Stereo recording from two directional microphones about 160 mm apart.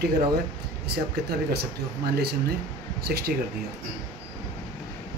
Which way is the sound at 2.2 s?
80° right.